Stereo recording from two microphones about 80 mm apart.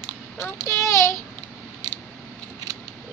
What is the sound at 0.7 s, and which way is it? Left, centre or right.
Speech, left.